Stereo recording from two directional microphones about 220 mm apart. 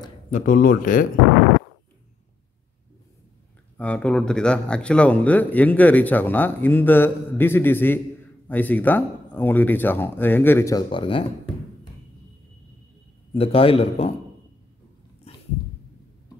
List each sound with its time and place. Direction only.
0.3 s speech: 40° left (ahead or behind)
3.7 s speech: 5° left (ahead or behind); by 11.2 s 25° left (ahead or behind)
13.4 s a man's voice: 25° left (ahead or behind)